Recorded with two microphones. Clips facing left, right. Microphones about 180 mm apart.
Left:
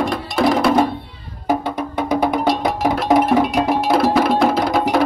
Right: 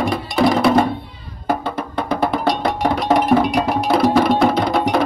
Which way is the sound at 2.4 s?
Centre (ahead or behind).